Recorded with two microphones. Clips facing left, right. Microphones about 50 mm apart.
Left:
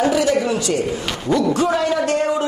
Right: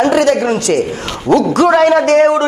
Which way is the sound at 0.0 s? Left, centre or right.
Right.